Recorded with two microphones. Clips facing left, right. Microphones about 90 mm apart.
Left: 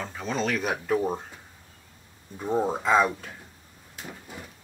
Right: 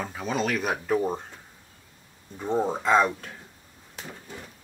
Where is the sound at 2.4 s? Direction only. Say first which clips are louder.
Even; 5° left (ahead or behind).